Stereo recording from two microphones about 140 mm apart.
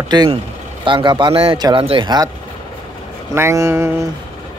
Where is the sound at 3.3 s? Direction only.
20° right (ahead or behind).